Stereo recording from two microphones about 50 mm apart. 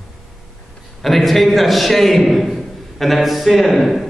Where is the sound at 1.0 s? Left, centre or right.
Centre.